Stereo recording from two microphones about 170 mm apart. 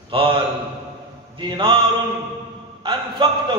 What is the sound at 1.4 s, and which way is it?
Speech, 30° right (ahead or behind).